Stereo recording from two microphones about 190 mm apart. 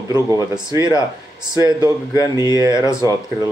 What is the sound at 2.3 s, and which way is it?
Speech, 20° right (ahead or behind).